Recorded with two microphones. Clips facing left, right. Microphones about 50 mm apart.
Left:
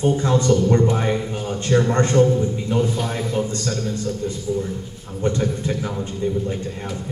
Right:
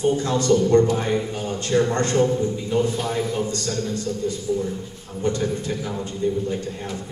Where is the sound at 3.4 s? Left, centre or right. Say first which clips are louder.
Left 1 dB; left.